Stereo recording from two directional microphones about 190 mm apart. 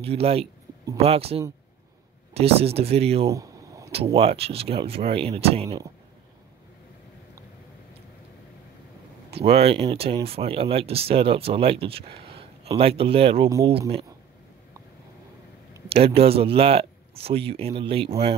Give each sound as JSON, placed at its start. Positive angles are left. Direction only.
{"t": 0.0, "sound": "speech", "side_deg": -30}
{"t": 3.3, "sound": "a sound", "side_deg": -15}
{"t": 3.9, "sound": "speech", "side_deg": -30}
{"t": 9.3, "sound": "speech", "side_deg": -30}
{"t": 15.9, "sound": "speech", "side_deg": -30}